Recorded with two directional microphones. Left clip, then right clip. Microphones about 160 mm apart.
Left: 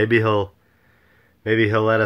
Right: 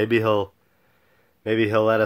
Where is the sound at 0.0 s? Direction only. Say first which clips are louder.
Left 2 dB; 25° right (ahead or behind).